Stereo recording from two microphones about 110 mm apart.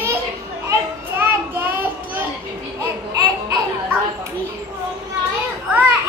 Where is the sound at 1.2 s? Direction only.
20° right (ahead or behind).